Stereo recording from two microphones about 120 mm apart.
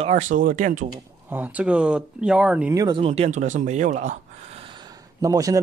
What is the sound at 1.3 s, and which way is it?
Speech, 15° right (ahead or behind).